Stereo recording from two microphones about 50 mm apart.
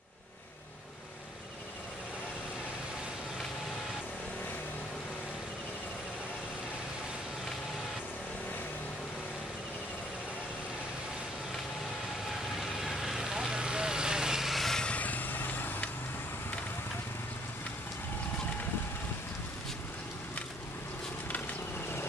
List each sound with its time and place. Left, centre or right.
12.3 s vehicle: centre
14.9 s vehicle: left